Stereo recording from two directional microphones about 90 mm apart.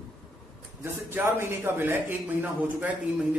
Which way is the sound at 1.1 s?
25° right (ahead or behind).